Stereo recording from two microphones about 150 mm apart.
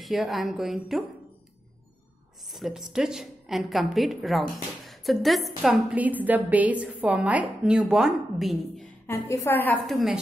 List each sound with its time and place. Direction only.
0.0 s a woman's voice: centre (ahead or behind)
2.5 s a woman's voice: centre (ahead or behind)
9.3 s a woman's voice: 20° left (ahead or behind)